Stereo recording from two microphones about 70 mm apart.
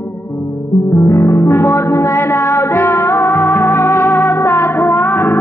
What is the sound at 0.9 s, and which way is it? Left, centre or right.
Music, left.